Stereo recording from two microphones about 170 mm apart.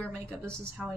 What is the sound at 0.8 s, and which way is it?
Speech, 5° right (ahead or behind).